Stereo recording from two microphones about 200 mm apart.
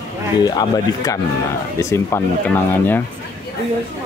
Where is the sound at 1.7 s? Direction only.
15° left (ahead or behind).